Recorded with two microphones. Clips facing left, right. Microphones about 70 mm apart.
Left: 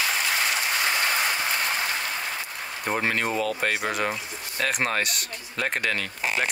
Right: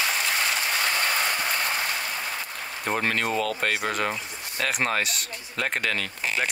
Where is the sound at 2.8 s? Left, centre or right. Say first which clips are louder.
Even; centre.